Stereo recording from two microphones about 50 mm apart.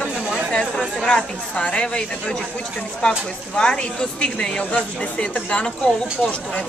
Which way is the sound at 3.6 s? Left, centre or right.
Centre.